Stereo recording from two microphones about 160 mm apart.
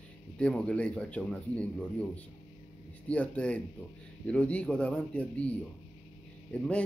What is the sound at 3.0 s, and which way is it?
Speech, 10° left (ahead or behind).